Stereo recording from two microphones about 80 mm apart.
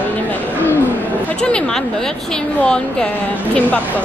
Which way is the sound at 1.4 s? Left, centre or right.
Centre.